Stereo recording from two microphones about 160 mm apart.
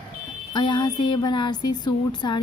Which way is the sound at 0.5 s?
30° left (ahead or behind).